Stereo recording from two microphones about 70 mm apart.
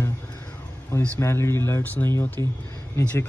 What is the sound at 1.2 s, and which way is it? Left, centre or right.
Speech, left.